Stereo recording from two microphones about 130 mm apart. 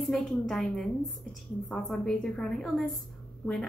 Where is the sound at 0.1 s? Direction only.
Centre (ahead or behind).